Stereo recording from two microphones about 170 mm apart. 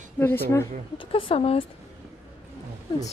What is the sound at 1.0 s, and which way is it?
Speech, 30° left (ahead or behind).